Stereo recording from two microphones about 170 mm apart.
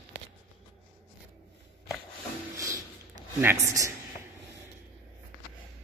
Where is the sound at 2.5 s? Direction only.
20° right (ahead or behind).